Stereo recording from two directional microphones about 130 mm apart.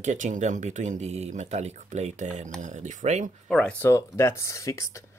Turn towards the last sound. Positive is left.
turn(degrees=25)  # may be behind; listen again after turning